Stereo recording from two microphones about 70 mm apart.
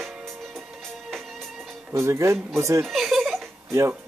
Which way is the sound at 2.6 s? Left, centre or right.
Right.